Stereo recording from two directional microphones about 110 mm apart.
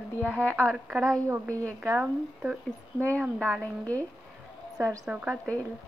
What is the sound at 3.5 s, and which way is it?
Speech, 10° left (ahead or behind).